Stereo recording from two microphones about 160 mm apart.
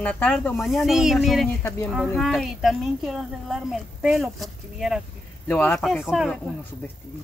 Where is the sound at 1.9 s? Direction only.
Centre (ahead or behind).